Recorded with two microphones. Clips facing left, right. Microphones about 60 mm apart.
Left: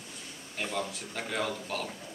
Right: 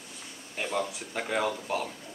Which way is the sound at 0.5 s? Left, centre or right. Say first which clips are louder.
Right 3 dB; centre.